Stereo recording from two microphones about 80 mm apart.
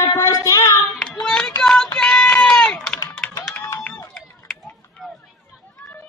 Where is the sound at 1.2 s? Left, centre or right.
Centre.